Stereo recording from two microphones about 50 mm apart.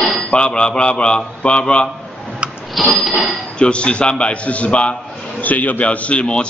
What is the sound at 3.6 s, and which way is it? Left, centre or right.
A man's voice, left.